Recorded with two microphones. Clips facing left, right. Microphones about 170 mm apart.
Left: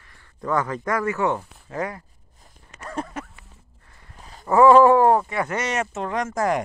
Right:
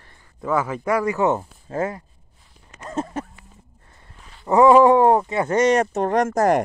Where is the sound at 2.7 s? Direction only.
20° right (ahead or behind).